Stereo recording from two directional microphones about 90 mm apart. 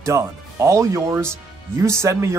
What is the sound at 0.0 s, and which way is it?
Speech, 30° right (ahead or behind).